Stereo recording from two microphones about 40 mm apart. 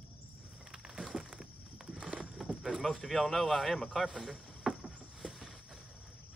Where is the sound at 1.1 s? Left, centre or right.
Centre.